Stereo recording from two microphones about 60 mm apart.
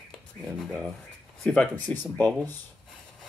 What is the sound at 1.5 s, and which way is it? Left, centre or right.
Speech, left.